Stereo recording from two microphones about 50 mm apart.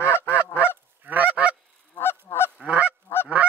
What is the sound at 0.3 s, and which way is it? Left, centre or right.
Honk, right.